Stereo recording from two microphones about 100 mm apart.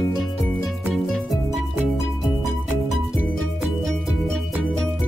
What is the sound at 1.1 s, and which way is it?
Music, centre (ahead or behind).